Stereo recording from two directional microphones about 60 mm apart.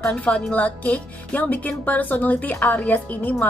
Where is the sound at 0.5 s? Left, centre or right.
Left.